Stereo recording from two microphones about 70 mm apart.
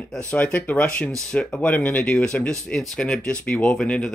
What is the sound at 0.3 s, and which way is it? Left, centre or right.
Speech, centre.